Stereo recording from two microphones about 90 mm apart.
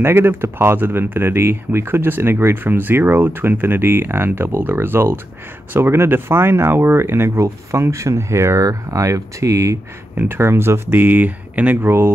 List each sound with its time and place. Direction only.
0.0 s speech: 25° right (ahead or behind)
10.1 s speech: 25° right (ahead or behind)